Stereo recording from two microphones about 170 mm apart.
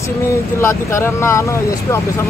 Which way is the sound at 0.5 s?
15° left (ahead or behind).